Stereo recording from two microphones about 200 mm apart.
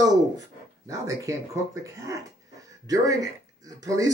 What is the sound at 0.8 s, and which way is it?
Speech, 15° right (ahead or behind).